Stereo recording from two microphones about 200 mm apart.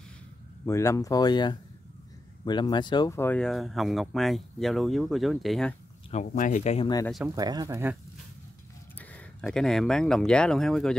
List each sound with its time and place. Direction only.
0.7 s speech: 15° left (ahead or behind)
6.0 s speech: 35° left (ahead or behind)
7.2 s speech: 20° right (ahead or behind)
8.9 s speech: 5° left (ahead or behind)